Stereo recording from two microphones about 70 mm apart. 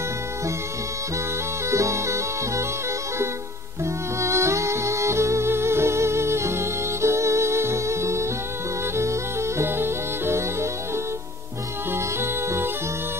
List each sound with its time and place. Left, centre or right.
1.7 s music: right
3.8 s music: right
11.9 s music: right